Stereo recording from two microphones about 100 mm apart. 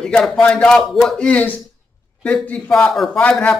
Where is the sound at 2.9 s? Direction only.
Centre (ahead or behind).